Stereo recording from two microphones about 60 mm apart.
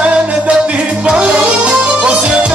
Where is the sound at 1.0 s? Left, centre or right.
Centre.